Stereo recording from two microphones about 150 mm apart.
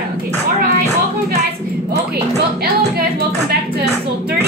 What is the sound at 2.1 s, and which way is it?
Music, 90° right.